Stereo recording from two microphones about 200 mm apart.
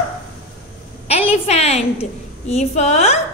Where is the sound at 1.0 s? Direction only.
30° left (ahead or behind).